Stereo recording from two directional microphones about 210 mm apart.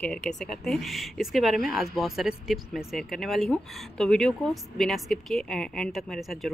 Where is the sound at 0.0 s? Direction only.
5° left (ahead or behind).